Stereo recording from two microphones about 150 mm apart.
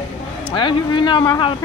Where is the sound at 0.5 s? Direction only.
30° left (ahead or behind).